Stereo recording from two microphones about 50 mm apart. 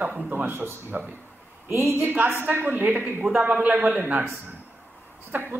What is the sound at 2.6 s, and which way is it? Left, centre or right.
Speech, right.